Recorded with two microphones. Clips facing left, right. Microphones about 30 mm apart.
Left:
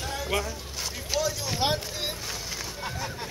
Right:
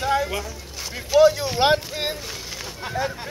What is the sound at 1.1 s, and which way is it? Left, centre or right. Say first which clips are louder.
Speech: right 14 dB; centre.